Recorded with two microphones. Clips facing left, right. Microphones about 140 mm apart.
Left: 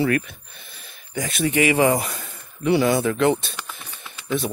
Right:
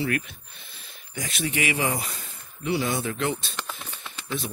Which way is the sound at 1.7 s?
60° left (ahead or behind).